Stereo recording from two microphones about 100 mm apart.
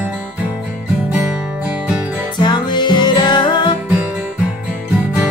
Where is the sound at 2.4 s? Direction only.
50° left (ahead or behind).